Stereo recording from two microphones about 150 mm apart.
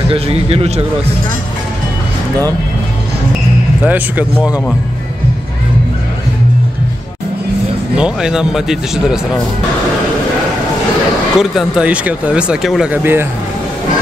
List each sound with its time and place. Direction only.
0.1 s a man's voice: 40° right (ahead or behind)
3.8 s speech: 10° right (ahead or behind)
7.9 s speech: 5° right (ahead or behind)
11.3 s speech: centre (ahead or behind)